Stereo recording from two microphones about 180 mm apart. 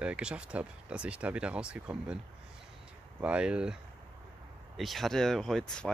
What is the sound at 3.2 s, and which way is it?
Speech, 5° right (ahead or behind).